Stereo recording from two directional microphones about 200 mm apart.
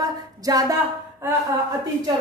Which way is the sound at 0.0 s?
20° right (ahead or behind).